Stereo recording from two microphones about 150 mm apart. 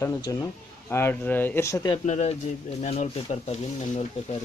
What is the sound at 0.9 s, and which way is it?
Speech, 15° left (ahead or behind).